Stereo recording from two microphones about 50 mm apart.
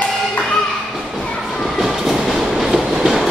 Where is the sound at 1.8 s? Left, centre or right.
Centre.